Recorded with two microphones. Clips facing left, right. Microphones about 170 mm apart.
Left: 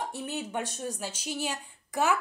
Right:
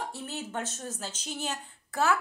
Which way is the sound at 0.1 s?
15° left (ahead or behind).